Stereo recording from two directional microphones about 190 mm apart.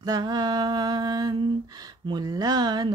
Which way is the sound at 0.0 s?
20° right (ahead or behind).